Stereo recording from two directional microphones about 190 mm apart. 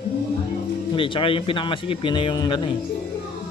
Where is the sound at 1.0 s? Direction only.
25° left (ahead or behind).